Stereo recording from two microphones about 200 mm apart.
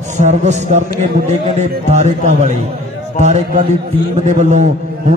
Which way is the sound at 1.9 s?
35° right (ahead or behind).